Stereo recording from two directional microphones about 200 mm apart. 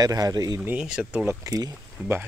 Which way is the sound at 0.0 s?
20° right (ahead or behind).